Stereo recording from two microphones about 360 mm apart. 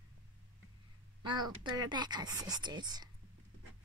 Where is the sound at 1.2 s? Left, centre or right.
Centre.